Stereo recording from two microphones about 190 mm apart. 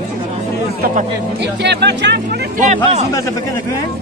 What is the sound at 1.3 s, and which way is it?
Speech, 65° right (ahead or behind).